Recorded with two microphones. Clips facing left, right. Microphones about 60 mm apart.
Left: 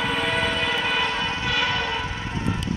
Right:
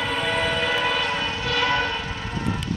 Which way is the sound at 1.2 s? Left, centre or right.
Left.